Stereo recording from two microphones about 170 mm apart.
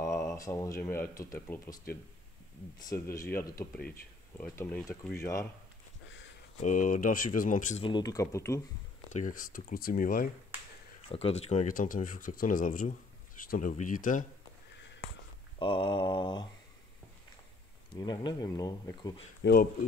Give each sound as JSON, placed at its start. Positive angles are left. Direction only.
{"t": 0.0, "sound": "speech", "side_deg": 15}
{"t": 2.8, "sound": "speech", "side_deg": 20}
{"t": 6.6, "sound": "speech", "side_deg": 50}
{"t": 7.8, "sound": "speech", "side_deg": 25}
{"t": 9.1, "sound": "speech", "side_deg": 50}
{"t": 11.1, "sound": "speech", "side_deg": 35}
{"t": 15.6, "sound": "speech", "side_deg": 30}
{"t": 17.9, "sound": "speech", "side_deg": 25}
{"t": 19.4, "sound": "speech", "side_deg": 60}